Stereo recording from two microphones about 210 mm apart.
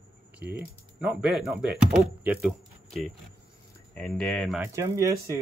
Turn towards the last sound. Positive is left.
turn(degrees=-15)  # may be behind; listen again after turning